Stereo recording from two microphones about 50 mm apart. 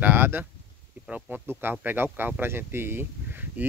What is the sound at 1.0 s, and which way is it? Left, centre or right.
Speech, right.